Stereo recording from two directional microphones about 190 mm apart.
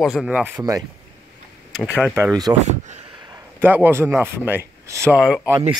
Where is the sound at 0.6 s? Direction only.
20° right (ahead or behind).